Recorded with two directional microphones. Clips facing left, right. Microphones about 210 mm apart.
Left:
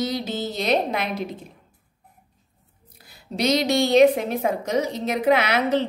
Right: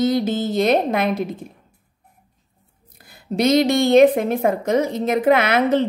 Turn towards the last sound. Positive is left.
turn(degrees=-50)  # may be behind; listen again after turning